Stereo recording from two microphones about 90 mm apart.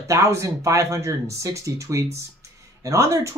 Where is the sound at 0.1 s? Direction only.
35° right (ahead or behind).